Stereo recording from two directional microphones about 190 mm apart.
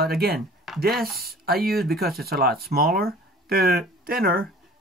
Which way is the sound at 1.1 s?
55° right (ahead or behind).